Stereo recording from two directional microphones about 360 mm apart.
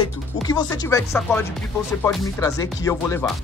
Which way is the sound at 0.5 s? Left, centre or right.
Centre.